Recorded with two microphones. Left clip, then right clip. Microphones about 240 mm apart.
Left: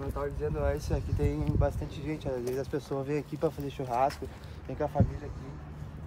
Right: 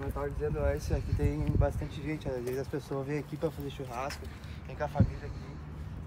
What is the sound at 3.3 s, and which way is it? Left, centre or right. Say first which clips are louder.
Speech: left 4 dB; centre.